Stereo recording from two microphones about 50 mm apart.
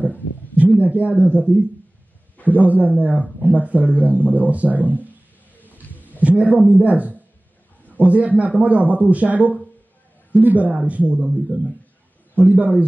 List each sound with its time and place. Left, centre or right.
0.7 s a man's voice: right
5.8 s a sound: left
6.2 s a man's voice: right